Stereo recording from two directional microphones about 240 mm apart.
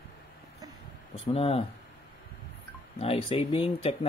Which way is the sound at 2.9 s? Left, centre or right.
Left.